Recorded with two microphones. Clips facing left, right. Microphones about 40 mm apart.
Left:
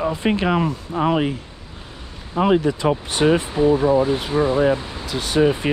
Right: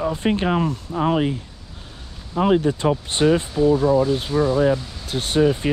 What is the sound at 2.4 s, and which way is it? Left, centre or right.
Speech, left.